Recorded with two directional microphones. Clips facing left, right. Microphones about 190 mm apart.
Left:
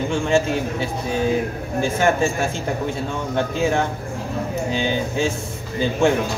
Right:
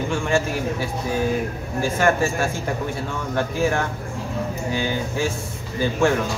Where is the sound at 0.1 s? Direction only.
20° left (ahead or behind).